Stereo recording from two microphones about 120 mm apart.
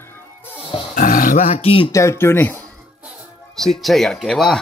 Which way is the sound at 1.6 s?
50° left (ahead or behind).